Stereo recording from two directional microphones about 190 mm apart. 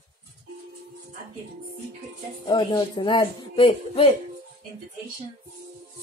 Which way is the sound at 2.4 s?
20° left (ahead or behind).